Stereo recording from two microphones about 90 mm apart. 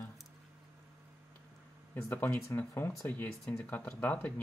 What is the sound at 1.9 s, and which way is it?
Speech, 20° left (ahead or behind).